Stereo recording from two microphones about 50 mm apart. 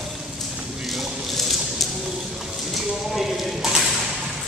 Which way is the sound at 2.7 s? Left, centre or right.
Centre.